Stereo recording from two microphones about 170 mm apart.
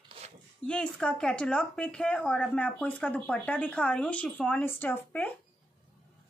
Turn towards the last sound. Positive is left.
turn(degrees=10)  # may be behind; listen again after turning